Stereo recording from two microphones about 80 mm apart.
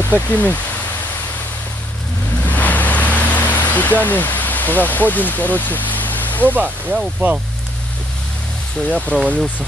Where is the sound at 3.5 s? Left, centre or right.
Centre.